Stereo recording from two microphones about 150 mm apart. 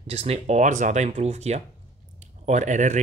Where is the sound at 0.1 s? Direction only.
45° right (ahead or behind).